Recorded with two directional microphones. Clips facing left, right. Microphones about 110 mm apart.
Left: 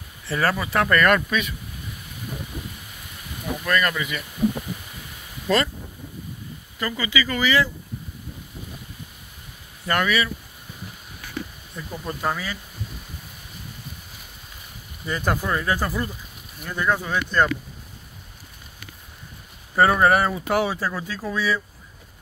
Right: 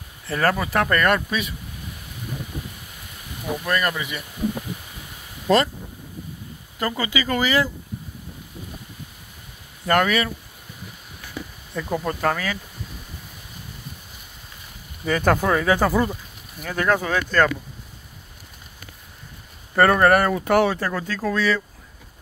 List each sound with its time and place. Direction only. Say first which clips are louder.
0.3 s speech: right 2 dB; 45° right (ahead or behind)
3.6 s speech: left 1 dB; 20° right (ahead or behind)
6.8 s speech: right 1 dB; 45° right (ahead or behind)
9.8 s speech: right 3 dB; 50° right (ahead or behind)
11.7 s speech: right 8 dB; 55° right (ahead or behind); by 12.5 s 80° right
15.0 s speech: right 5 dB; 80° right
19.8 s speech: right 2 dB; 55° right (ahead or behind); by 21.6 s 70° right (ahead or behind)